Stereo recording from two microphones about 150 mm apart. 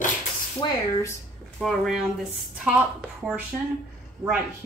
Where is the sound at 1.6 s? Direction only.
Centre (ahead or behind).